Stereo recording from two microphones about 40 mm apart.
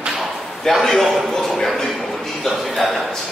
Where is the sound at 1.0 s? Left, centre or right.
Centre.